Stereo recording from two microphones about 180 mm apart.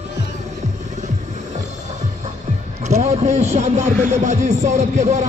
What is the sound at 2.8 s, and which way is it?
A man's voice, 40° right (ahead or behind).